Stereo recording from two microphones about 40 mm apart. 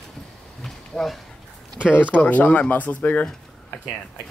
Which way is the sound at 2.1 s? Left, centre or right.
Left.